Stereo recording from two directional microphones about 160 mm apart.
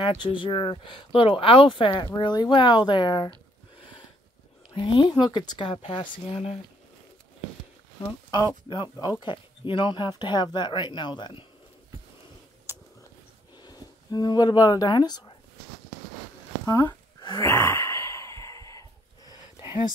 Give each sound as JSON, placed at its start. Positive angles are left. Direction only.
{"t": 0.0, "sound": "speech", "side_deg": 30}
{"t": 4.7, "sound": "speech", "side_deg": 30}
{"t": 8.6, "sound": "speech", "side_deg": 25}
{"t": 13.6, "sound": "speech", "side_deg": 25}
{"t": 16.6, "sound": "sigh", "side_deg": 20}